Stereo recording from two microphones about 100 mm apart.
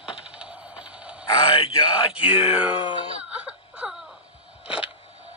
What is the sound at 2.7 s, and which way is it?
Speech, 60° left (ahead or behind).